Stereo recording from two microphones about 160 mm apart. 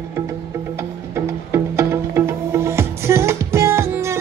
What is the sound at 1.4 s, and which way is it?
Music, 15° right (ahead or behind).